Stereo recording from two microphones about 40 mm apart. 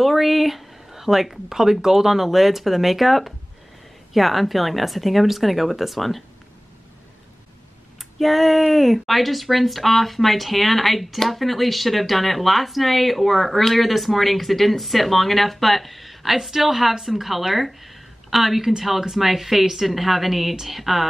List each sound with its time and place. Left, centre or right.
0.0 s speech: centre
8.2 s a woman's voice: centre